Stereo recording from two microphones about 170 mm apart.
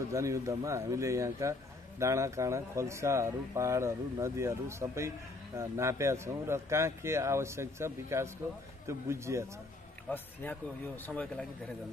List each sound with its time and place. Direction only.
0.1 s speech: 20° right (ahead or behind)
10.1 s speech: 10° left (ahead or behind)